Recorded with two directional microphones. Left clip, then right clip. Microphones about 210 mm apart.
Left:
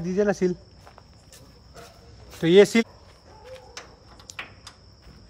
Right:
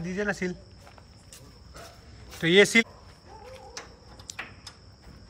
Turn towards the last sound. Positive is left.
turn(degrees=15)  # may be behind; listen again after turning